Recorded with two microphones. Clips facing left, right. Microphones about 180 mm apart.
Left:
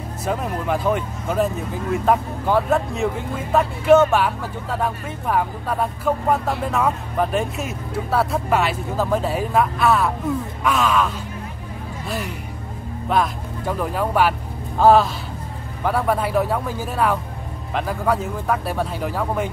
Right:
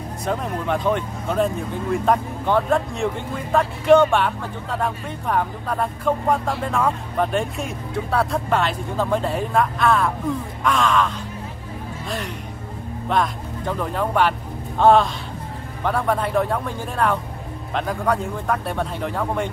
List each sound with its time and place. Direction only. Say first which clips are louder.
0.2 s speech: left 1 dB; 5° left (ahead or behind)
13.1 s speech: left 1 dB; 5° left (ahead or behind)